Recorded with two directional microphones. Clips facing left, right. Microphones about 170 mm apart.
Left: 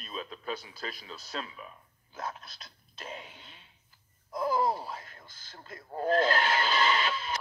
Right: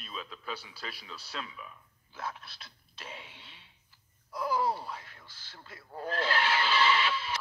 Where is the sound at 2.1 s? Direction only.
45° left (ahead or behind).